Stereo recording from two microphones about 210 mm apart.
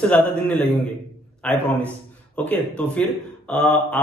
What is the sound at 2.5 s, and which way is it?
Speech, 5° left (ahead or behind).